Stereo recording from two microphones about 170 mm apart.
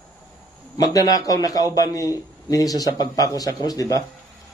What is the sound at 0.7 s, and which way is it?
A man's voice, 20° left (ahead or behind).